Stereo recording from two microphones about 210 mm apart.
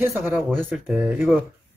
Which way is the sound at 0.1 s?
Centre (ahead or behind).